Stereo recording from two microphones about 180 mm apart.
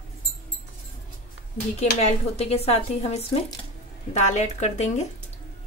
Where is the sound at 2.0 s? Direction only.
35° left (ahead or behind).